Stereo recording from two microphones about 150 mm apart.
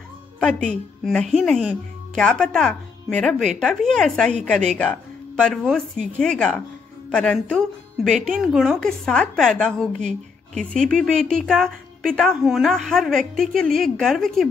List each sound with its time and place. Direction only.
0.4 s a woman's voice: 5° left (ahead or behind)